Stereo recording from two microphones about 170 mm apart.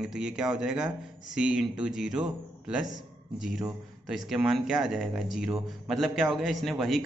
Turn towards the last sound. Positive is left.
turn(degrees=0)  # may be behind; listen again after turning